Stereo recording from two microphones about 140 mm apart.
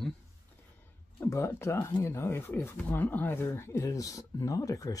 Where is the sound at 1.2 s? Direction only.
20° left (ahead or behind).